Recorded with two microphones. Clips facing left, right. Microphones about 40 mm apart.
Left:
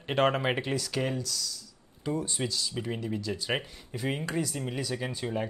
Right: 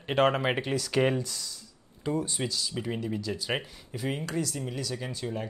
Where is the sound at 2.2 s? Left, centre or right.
Centre.